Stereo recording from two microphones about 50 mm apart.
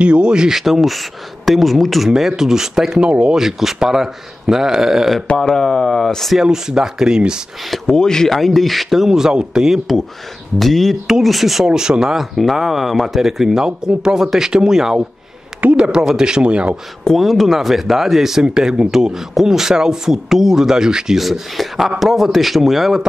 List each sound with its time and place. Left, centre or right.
0.0 s speech: centre
3.0 s speech: centre
5.4 s speech: centre
6.3 s speech: centre
7.8 s speech: centre
10.6 s speech: centre
11.6 s speech: centre
17.2 s speech: centre